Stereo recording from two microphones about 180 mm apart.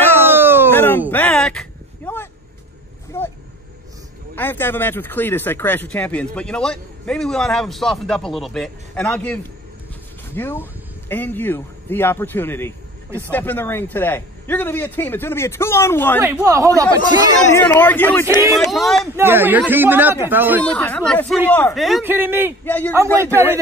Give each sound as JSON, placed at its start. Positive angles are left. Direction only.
{"t": 0.2, "sound": "a sound", "side_deg": -10}
{"t": 0.7, "sound": "a sound", "side_deg": 10}
{"t": 4.4, "sound": "a man's voice", "side_deg": 10}
{"t": 16.2, "sound": "a man's voice", "side_deg": -15}
{"t": 17.6, "sound": "a man's voice", "side_deg": 10}
{"t": 19.1, "sound": "a man's voice", "side_deg": -10}
{"t": 20.7, "sound": "a man's voice", "side_deg": 5}
{"t": 21.7, "sound": "speech", "side_deg": 0}
{"t": 22.0, "sound": "a man's voice", "side_deg": -10}
{"t": 22.7, "sound": "a man's voice", "side_deg": 10}
{"t": 23.3, "sound": "a man's voice", "side_deg": -15}